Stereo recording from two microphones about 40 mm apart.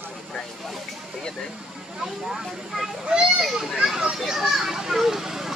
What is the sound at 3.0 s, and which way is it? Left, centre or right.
Children playing, right.